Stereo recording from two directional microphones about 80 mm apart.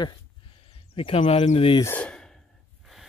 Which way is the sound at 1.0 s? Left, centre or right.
Left.